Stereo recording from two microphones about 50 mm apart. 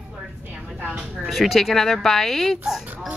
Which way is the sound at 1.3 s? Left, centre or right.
Centre.